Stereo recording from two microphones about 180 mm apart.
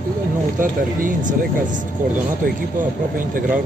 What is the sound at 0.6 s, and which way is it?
Speech, 50° right (ahead or behind).